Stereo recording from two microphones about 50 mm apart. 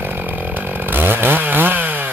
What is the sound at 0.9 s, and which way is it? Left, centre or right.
Chainsaw, right.